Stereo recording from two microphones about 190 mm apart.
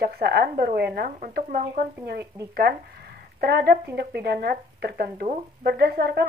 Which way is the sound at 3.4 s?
55° right (ahead or behind).